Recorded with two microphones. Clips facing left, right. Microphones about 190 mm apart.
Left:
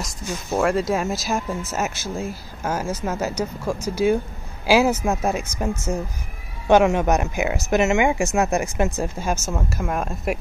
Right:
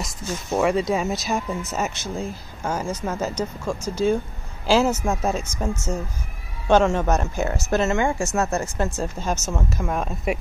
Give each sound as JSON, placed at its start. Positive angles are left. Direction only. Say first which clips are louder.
{"t": 0.3, "sound": "speech", "louder": "even", "side_deg": 0}
{"t": 6.7, "sound": "speech", "louder": "left 2 dB", "side_deg": 10}